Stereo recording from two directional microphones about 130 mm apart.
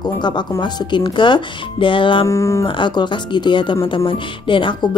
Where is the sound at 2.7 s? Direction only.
35° left (ahead or behind).